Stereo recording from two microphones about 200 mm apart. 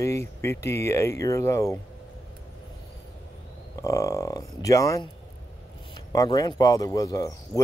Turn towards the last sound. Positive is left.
turn(degrees=15)  # may be behind; listen again after turning